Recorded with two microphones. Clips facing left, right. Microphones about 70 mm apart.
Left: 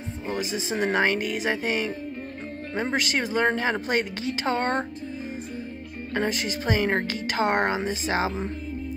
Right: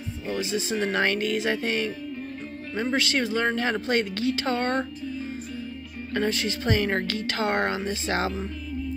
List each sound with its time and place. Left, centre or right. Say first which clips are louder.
0.3 s speech: right 1 dB; left
6.1 s speech: right 1 dB; centre